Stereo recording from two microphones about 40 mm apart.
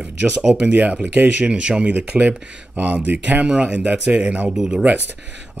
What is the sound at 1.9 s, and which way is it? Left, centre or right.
Speech, right.